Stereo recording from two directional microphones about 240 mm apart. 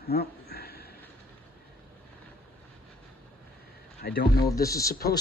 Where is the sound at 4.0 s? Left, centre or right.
Left.